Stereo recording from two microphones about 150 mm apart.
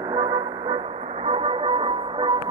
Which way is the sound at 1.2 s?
40° right (ahead or behind).